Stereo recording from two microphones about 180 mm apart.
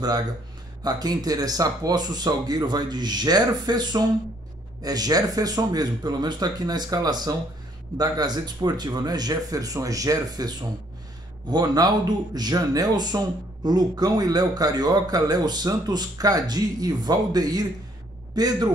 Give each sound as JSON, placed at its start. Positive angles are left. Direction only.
{"t": 0.8, "sound": "speech", "side_deg": -20}
{"t": 11.5, "sound": "a man's voice", "side_deg": -20}